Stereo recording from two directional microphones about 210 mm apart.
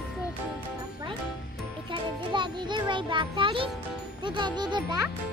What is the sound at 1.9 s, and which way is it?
Music, 20° right (ahead or behind).